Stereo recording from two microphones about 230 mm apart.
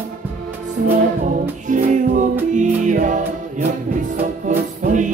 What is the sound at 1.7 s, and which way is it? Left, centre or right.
Music, right.